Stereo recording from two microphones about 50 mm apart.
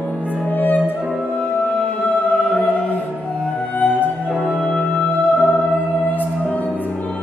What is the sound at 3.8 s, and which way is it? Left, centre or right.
Music, left.